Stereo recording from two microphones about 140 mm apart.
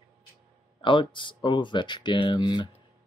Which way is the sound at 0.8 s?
35° left (ahead or behind).